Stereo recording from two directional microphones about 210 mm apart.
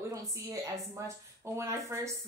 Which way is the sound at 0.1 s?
15° right (ahead or behind).